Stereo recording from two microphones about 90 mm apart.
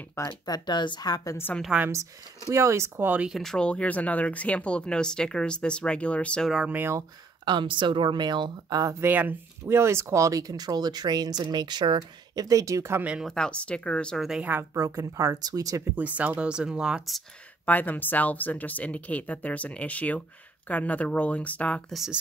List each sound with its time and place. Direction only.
0.2 s speech: 35° left (ahead or behind)
0.5 s a woman's voice: 55° left (ahead or behind)
2.5 s speech: 35° right (ahead or behind)
3.3 s speech: centre (ahead or behind)
3.5 s speech: 10° left (ahead or behind)
6.7 s speech: 20° right (ahead or behind)
7.4 s speech: 60° right (ahead or behind)
9.0 s speech: 20° right (ahead or behind); by 12.4 s 55° right (ahead or behind)
12.4 s speech: 35° right (ahead or behind)
13.2 s speech: 5° left (ahead or behind)
14.4 s speech: 25° right (ahead or behind)
16.0 s speech: 15° right (ahead or behind)
17.6 s speech: 20° left (ahead or behind)